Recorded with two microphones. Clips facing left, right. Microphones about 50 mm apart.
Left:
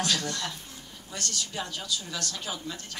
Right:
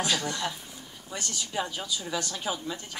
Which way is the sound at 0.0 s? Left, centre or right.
Centre.